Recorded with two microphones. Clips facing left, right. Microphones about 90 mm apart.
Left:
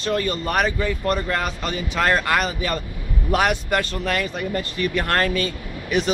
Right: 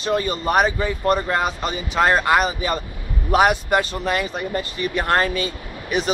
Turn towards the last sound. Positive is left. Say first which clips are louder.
# left 1 dB
turn(degrees=-15)  # may be behind; listen again after turning